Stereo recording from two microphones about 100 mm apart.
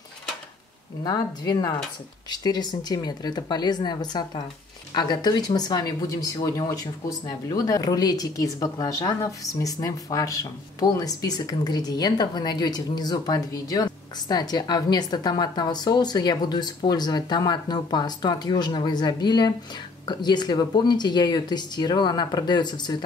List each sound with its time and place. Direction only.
1.0 s a woman's voice: 40° left (ahead or behind)